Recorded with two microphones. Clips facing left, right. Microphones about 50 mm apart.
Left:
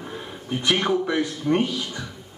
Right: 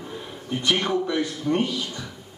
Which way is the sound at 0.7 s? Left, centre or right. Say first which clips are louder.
Left 2 dB; centre.